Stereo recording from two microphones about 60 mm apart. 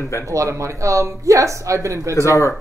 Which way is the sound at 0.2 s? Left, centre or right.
Right.